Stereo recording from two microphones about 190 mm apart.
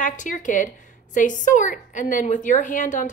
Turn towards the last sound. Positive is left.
turn(degrees=40)  # may be behind; listen again after turning